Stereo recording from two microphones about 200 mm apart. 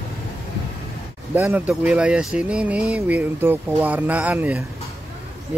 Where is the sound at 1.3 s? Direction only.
10° right (ahead or behind).